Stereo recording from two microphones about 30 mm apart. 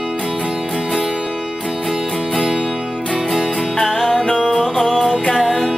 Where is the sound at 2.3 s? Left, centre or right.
Centre.